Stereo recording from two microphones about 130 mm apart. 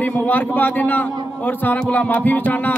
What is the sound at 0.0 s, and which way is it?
A man's voice, 15° left (ahead or behind).